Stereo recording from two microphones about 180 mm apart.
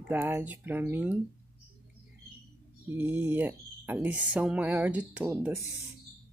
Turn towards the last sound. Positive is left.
turn(degrees=-10)  # may be behind; listen again after turning